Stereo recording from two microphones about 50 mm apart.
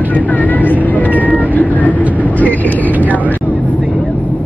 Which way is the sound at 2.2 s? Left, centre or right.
Left.